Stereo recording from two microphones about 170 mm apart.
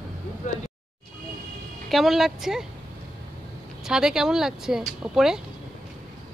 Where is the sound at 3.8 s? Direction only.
5° right (ahead or behind).